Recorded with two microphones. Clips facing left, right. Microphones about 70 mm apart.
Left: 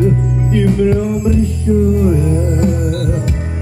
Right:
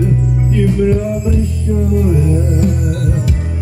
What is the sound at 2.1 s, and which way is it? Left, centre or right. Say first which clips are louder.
Music: even; left.